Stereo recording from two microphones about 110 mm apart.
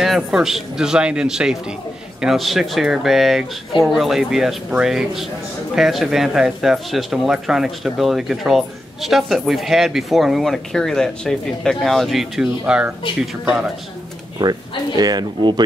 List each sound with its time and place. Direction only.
0.0 s speech: 5° right (ahead or behind)
14.4 s speech: 35° right (ahead or behind)